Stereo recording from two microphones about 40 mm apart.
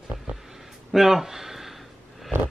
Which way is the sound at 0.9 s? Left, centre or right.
Centre.